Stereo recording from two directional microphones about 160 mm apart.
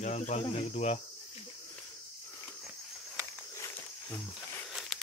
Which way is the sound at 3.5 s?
20° left (ahead or behind).